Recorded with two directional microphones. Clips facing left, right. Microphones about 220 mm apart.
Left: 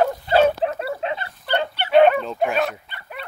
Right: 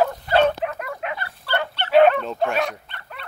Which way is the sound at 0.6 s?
30° left (ahead or behind).